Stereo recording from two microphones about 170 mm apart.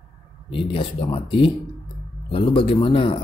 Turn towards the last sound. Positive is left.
turn(degrees=30)  # may be behind; listen again after turning